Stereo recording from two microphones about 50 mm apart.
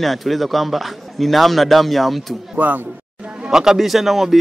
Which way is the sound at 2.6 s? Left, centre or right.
Right.